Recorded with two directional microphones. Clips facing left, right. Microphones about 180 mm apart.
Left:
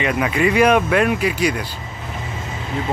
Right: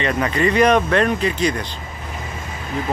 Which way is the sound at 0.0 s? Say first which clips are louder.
Left 1 dB; 5° left (ahead or behind).